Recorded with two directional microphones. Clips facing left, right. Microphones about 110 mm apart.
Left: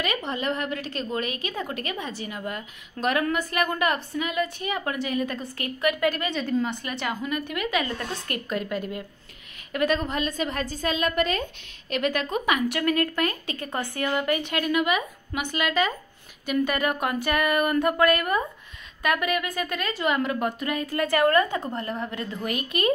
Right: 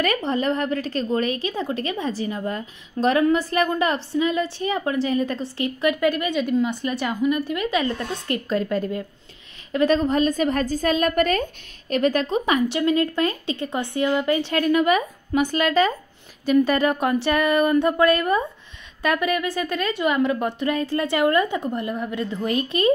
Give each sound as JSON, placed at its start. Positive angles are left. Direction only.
{"t": 0.0, "sound": "a woman's voice", "side_deg": -40}
{"t": 22.4, "sound": "speech", "side_deg": -30}